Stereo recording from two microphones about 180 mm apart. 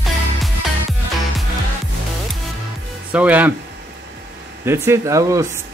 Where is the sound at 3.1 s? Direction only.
10° right (ahead or behind).